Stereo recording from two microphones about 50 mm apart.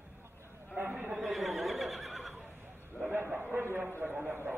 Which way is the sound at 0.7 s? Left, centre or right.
Right.